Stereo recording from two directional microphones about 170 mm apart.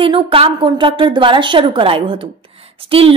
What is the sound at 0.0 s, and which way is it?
A woman's voice, 30° right (ahead or behind).